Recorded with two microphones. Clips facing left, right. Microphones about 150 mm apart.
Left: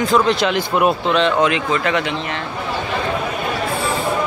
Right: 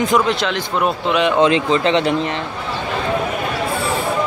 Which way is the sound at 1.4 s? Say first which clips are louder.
Right 3 dB; 30° right (ahead or behind).